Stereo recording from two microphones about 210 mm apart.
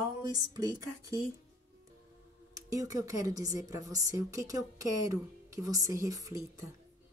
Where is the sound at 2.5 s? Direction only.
15° right (ahead or behind).